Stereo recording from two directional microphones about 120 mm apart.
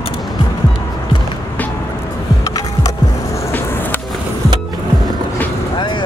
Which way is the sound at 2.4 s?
30° left (ahead or behind).